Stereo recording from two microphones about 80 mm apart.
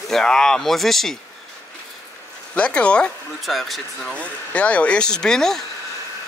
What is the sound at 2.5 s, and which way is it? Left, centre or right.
Speech, centre.